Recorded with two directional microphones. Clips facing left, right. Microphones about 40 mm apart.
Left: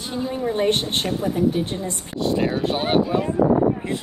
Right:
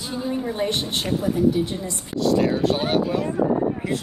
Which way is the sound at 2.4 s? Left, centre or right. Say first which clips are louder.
Even; left.